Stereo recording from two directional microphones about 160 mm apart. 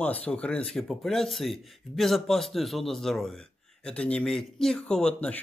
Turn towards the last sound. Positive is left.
turn(degrees=5)  # may be behind; listen again after turning